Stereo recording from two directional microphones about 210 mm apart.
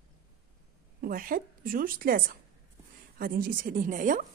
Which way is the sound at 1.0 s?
40° right (ahead or behind).